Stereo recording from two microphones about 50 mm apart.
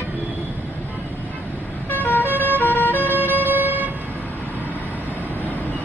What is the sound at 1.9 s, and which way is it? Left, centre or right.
Vehicle, left.